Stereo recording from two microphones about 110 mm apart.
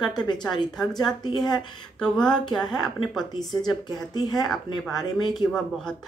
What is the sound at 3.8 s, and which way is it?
Speech, 40° left (ahead or behind).